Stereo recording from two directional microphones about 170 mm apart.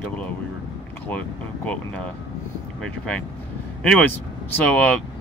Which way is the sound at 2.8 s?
5° left (ahead or behind).